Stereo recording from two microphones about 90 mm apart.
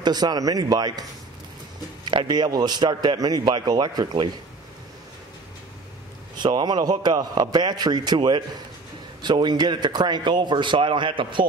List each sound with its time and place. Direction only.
0.0 s a man's voice: 50° right (ahead or behind)
2.0 s a man's voice: 55° right (ahead or behind)
6.3 s a man's voice: 55° right (ahead or behind)